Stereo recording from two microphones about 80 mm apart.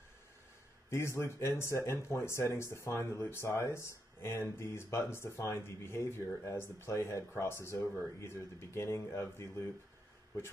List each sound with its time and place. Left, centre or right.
0.8 s speech: left